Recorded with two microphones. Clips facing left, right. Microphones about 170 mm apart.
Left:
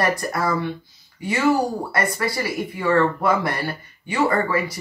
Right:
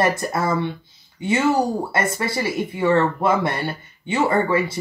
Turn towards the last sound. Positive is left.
turn(degrees=-25)  # may be behind; listen again after turning